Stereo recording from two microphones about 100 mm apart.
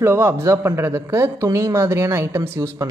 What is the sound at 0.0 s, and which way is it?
Speech, 25° right (ahead or behind).